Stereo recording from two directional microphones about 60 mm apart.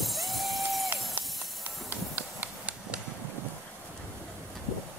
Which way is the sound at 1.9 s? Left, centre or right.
Right.